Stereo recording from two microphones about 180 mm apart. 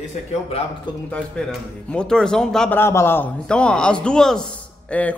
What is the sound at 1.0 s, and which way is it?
A woman's voice, 5° left (ahead or behind).